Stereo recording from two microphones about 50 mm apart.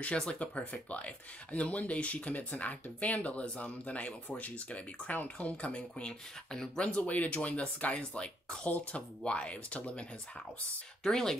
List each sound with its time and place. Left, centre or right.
0.0 s speech: left
7.0 s speech: left
11.1 s speech: centre